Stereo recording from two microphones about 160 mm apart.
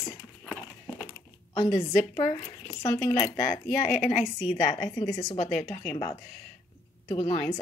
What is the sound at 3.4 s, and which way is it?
Speech, 60° left (ahead or behind).